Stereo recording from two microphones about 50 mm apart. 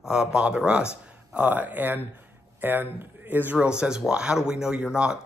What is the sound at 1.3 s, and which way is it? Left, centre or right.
Speech, right.